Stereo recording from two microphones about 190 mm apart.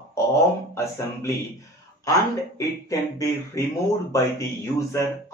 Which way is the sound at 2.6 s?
15° left (ahead or behind).